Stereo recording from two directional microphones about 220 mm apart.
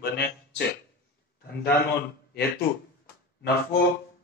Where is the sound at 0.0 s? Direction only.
45° left (ahead or behind).